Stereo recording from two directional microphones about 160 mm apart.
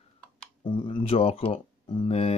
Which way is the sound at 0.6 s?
30° left (ahead or behind).